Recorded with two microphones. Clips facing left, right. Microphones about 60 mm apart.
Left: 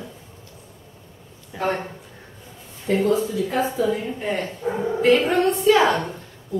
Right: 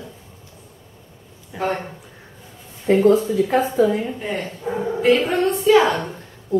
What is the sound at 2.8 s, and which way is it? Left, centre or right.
Speech, right.